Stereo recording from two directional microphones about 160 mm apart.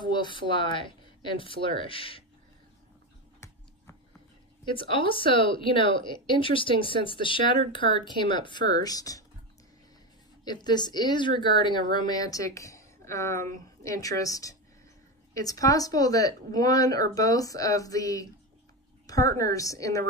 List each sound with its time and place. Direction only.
0.0 s speech: 30° left (ahead or behind)
4.6 s speech: 30° left (ahead or behind)
10.4 s a woman's voice: 25° left (ahead or behind)